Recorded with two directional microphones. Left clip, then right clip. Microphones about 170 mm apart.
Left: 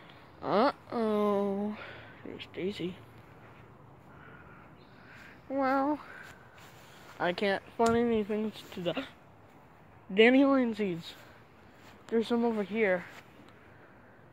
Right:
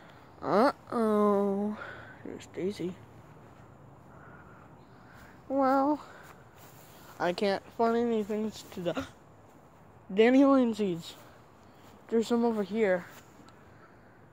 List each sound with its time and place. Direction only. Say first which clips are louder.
0.4 s a sound: right 2 dB; 15° right (ahead or behind)
5.6 s speech: right 3 dB; centre (ahead or behind)
7.2 s speech: right 1 dB; 5° right (ahead or behind)
7.7 s speech: left 2 dB; 15° left (ahead or behind); by 9.1 s centre (ahead or behind)
10.4 s speech: right 3 dB; 15° right (ahead or behind); by 13.1 s centre (ahead or behind)